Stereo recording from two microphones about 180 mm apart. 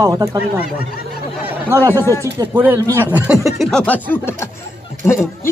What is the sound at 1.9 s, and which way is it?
Speech, 15° left (ahead or behind).